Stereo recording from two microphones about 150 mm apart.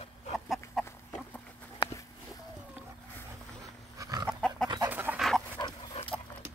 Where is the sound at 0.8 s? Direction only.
Centre (ahead or behind).